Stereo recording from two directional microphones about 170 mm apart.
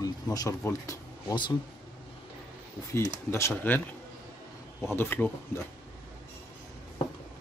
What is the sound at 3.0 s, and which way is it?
Speech, 15° left (ahead or behind).